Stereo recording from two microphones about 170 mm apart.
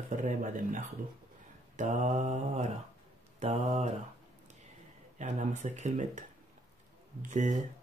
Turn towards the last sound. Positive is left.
turn(degrees=-45)  # may be behind; listen again after turning